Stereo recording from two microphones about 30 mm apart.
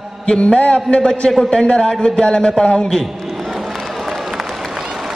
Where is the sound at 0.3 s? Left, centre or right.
Left.